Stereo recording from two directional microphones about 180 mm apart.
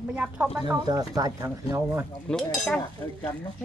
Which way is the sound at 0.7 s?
20° right (ahead or behind).